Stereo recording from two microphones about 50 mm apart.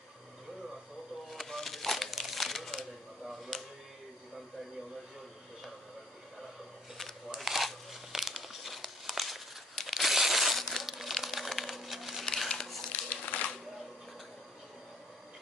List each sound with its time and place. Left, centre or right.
1.3 s crumpling: centre
2.5 s camera: centre
7.3 s crumpling: centre
11.7 s a sound: centre
12.4 s a sound: centre
13.1 s crumpling: left